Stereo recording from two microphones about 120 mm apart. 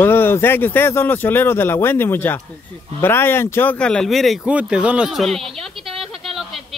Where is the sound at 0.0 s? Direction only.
20° left (ahead or behind).